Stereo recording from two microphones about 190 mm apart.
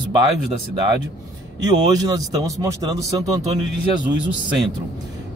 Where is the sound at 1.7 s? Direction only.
20° right (ahead or behind).